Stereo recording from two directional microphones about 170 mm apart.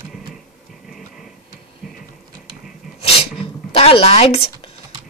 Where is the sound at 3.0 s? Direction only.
35° left (ahead or behind).